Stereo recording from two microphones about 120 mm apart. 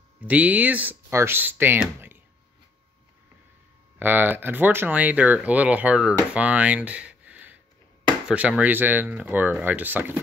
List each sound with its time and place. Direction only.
0.2 s speech: 10° right (ahead or behind)
4.0 s speech: 15° right (ahead or behind)